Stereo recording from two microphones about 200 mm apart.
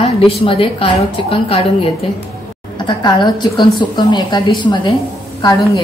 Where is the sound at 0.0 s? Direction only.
25° left (ahead or behind).